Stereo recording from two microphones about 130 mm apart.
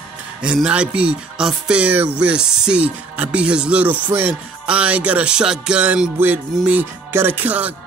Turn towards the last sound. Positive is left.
turn(degrees=-10)  # may be behind; listen again after turning